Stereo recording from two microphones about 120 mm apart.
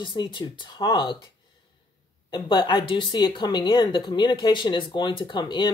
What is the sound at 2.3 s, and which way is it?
A woman's voice, 40° left (ahead or behind).